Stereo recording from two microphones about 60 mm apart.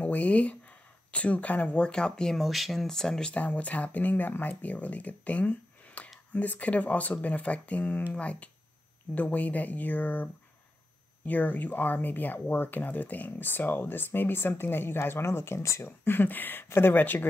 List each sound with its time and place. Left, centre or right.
0.0 s speech: left
3.3 s speech: left
16.0 s speech: left